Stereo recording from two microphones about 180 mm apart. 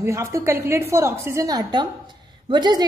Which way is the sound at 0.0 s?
15° right (ahead or behind).